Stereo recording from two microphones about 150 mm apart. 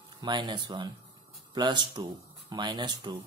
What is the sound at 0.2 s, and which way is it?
Speech, 30° right (ahead or behind).